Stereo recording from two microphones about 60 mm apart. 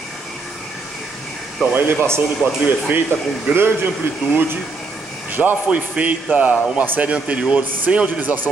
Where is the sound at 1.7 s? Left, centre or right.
Right.